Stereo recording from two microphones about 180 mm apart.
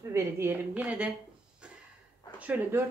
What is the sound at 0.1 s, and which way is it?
A woman's voice, 15° right (ahead or behind).